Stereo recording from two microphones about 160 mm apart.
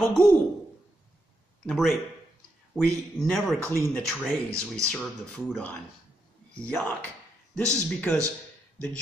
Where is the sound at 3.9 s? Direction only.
5° left (ahead or behind).